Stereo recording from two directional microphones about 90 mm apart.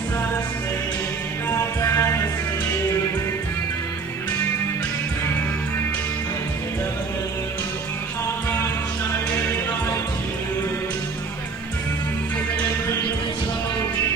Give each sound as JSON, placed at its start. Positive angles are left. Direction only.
{"t": 1.5, "sound": "music", "side_deg": 35}